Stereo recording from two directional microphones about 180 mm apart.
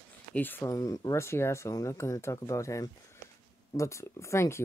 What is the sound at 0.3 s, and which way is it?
Speech, 10° left (ahead or behind).